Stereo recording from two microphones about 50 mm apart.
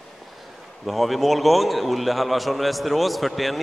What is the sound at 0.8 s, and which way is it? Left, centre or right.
A man's voice, centre.